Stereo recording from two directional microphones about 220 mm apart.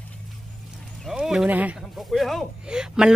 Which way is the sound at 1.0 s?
Centre (ahead or behind).